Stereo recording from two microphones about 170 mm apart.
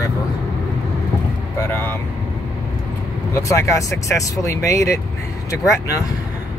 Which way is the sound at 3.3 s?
15° left (ahead or behind).